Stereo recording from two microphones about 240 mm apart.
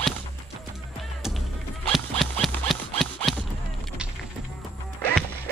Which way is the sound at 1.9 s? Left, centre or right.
Centre.